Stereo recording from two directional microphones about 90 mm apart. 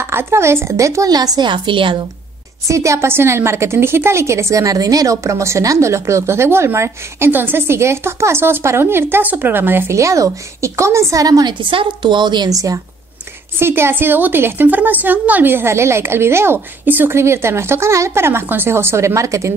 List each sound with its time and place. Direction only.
0.0 s a woman's voice: 25° right (ahead or behind); by 2.0 s 70° right (ahead or behind)
2.7 s a woman's voice: 35° right (ahead or behind)
11.7 s speech: 65° right (ahead or behind)
12.4 s a woman's voice: 40° right (ahead or behind)
13.6 s a woman's voice: 25° right (ahead or behind)